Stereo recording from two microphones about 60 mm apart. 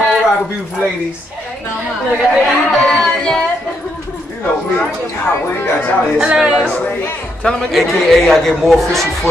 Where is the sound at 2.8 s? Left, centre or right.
Centre.